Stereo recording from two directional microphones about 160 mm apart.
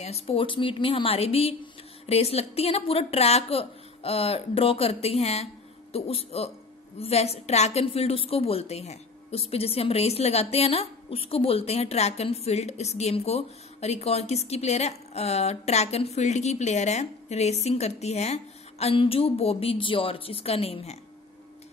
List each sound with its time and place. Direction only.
0.0 s a woman's voice: 40° left (ahead or behind)